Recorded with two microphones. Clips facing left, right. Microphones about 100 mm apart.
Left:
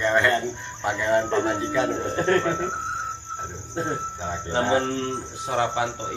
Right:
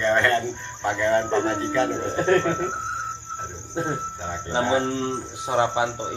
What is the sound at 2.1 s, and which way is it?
Insect, centre (ahead or behind).